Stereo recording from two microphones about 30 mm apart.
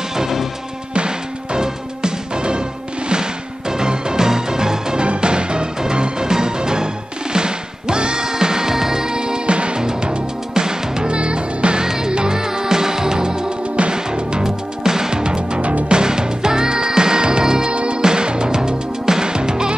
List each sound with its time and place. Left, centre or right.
0.1 s music: centre
0.9 s music: right
3.7 s music: right
5.0 s music: right
9.8 s music: right
11.1 s music: right
11.8 s music: right
12.1 s music: right
12.4 s music: right
14.4 s music: centre
17.6 s music: right